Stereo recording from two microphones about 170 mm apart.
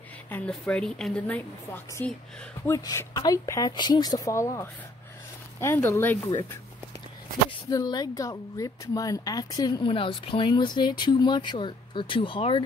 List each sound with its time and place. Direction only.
0.3 s a woman's voice: 5° left (ahead or behind)
7.7 s speech: 20° left (ahead or behind)